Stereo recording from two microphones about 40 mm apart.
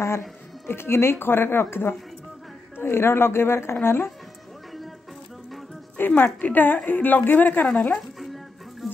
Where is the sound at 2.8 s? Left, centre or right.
Left.